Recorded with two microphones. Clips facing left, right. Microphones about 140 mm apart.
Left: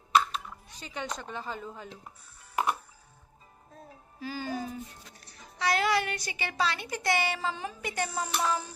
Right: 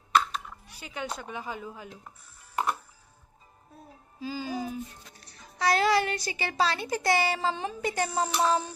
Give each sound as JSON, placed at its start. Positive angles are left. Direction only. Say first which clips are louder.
{"t": 0.7, "sound": "a woman's voice", "louder": "right 2 dB", "side_deg": -10}
{"t": 2.5, "sound": "music", "louder": "even", "side_deg": 10}
{"t": 3.7, "sound": "a woman's voice", "louder": "even", "side_deg": -15}
{"t": 5.6, "sound": "speech", "louder": "right 3 dB", "side_deg": -35}